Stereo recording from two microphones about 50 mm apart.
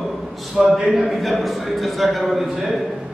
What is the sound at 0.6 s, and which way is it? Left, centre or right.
Speech, right.